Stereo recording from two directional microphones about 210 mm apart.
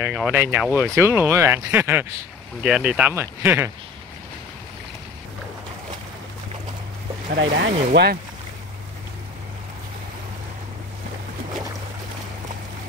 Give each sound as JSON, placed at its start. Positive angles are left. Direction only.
{"t": 0.0, "sound": "speech", "side_deg": -5}
{"t": 7.3, "sound": "speech", "side_deg": -55}